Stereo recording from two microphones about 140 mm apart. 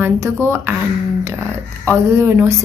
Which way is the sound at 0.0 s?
15° right (ahead or behind).